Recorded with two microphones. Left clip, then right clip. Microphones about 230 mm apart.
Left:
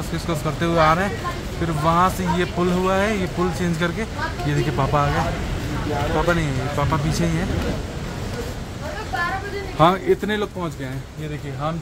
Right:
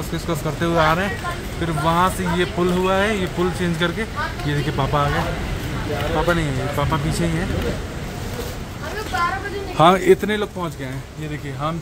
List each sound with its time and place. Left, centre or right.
0.3 s speech: centre
9.8 s a man's voice: right
10.2 s speech: centre